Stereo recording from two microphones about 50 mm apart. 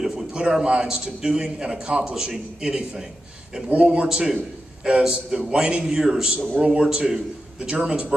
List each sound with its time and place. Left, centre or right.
0.0 s a man's voice: centre
6.3 s a man's voice: right